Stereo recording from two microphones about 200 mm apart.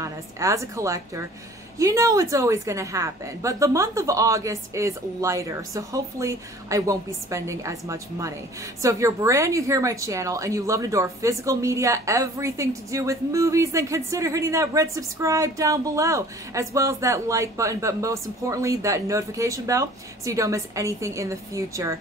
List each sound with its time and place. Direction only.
0.0 s a woman's voice: 15° right (ahead or behind)